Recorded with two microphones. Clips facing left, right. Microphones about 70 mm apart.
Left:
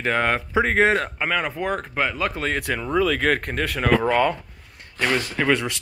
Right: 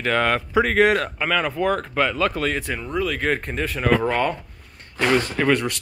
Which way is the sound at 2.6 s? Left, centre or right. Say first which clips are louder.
Left 3 dB; left.